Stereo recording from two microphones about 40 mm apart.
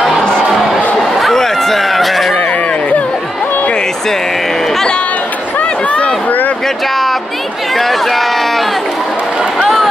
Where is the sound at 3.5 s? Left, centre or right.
Left.